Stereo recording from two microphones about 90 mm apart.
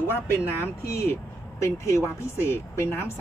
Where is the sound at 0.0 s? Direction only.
25° left (ahead or behind).